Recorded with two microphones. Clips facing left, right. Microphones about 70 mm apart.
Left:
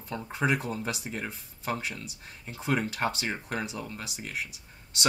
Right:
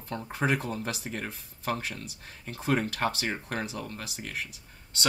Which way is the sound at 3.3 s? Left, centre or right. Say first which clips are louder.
Even; centre.